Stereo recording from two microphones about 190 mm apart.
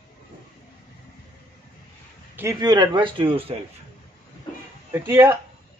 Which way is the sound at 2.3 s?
15° right (ahead or behind).